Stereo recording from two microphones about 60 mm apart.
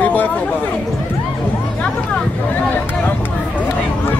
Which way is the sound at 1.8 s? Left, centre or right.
Centre.